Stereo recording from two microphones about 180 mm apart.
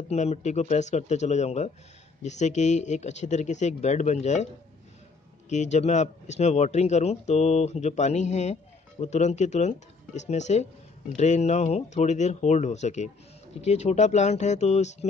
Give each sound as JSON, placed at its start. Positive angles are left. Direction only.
{"t": 0.1, "sound": "speech", "side_deg": 40}
{"t": 5.5, "sound": "speech", "side_deg": 40}